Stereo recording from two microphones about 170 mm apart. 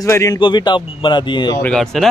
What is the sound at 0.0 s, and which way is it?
Speech, 20° left (ahead or behind).